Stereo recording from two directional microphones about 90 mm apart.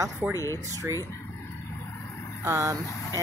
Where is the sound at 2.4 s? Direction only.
35° right (ahead or behind).